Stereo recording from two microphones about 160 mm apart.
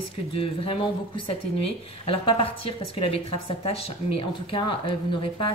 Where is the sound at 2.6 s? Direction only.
35° left (ahead or behind).